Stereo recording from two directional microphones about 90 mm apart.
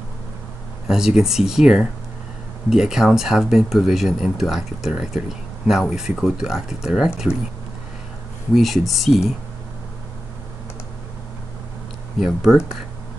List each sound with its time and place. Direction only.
0.8 s speech: 5° right (ahead or behind)
8.5 s speech: centre (ahead or behind)
12.2 s speech: centre (ahead or behind)